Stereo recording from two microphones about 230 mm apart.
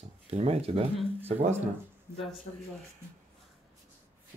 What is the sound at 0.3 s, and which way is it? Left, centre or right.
Speech, right.